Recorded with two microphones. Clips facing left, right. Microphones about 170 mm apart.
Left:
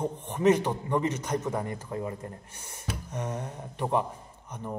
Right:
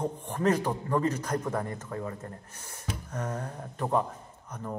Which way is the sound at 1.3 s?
5° left (ahead or behind).